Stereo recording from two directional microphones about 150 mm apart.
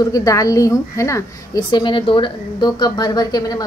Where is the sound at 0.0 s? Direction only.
25° left (ahead or behind).